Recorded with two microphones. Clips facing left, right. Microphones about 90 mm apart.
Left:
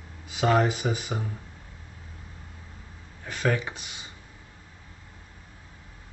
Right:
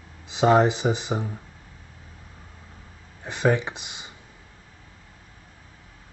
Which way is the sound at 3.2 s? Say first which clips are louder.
Right 5 dB; 20° right (ahead or behind).